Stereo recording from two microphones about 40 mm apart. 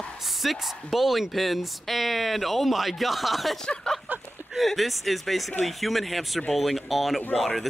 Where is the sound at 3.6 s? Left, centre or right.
Left.